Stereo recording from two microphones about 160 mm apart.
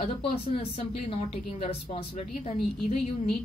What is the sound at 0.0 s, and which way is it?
A woman's voice, 40° left (ahead or behind).